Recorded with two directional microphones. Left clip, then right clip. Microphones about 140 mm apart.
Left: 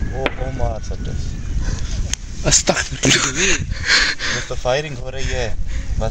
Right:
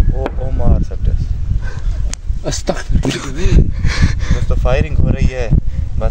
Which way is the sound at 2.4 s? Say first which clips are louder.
Left 4 dB; 15° right (ahead or behind).